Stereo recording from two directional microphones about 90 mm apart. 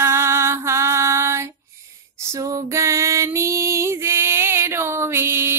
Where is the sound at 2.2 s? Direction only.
35° right (ahead or behind).